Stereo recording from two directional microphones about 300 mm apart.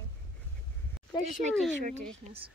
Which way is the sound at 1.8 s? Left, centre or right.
Right.